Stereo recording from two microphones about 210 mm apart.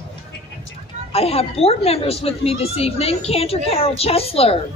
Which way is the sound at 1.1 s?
30° left (ahead or behind).